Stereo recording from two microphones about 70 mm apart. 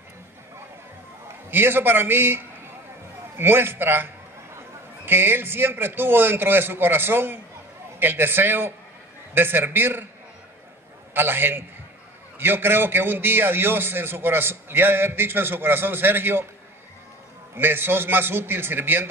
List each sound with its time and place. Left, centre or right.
1.5 s a man's voice: right
11.1 s a man's voice: right
17.6 s a man's voice: right